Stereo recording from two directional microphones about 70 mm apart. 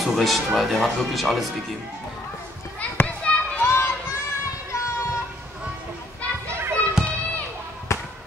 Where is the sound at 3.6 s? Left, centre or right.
Left.